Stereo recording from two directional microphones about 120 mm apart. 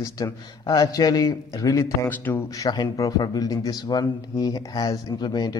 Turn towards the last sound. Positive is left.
turn(degrees=35)  # may be behind; listen again after turning